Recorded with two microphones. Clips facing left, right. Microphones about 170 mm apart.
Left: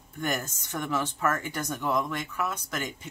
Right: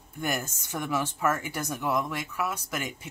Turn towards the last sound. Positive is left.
turn(degrees=-10)  # may be behind; listen again after turning